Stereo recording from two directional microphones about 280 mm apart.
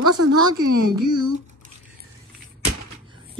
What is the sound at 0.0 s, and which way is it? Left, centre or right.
Speech, right.